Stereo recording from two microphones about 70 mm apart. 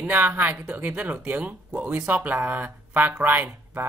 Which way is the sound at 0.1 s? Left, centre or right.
Right.